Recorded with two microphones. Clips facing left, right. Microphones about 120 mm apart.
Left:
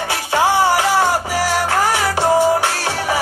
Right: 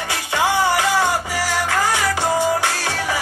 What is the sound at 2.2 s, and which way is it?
Music, 15° left (ahead or behind).